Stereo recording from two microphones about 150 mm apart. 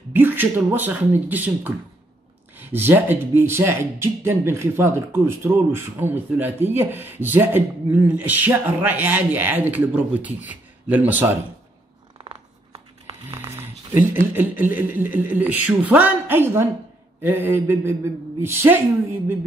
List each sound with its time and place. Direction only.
0.1 s a man's voice: 15° right (ahead or behind)
12.2 s zipper: 35° right (ahead or behind)
13.4 s a sound: 15° right (ahead or behind)
14.3 s speech: 10° right (ahead or behind)